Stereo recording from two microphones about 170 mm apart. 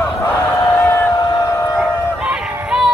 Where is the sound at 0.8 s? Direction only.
20° left (ahead or behind).